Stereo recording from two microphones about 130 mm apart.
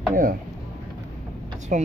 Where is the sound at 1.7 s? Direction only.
75° right (ahead or behind).